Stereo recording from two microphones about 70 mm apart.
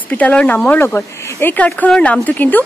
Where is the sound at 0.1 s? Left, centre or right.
Left.